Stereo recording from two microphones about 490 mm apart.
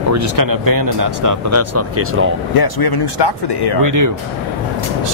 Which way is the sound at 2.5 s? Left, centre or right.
Left.